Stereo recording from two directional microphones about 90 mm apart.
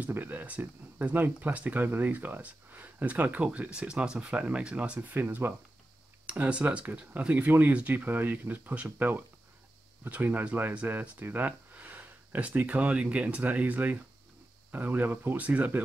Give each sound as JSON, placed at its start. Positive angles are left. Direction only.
{"t": 0.0, "sound": "speech", "side_deg": -20}